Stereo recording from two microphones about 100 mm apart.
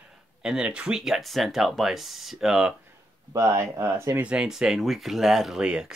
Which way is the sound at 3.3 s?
30° right (ahead or behind).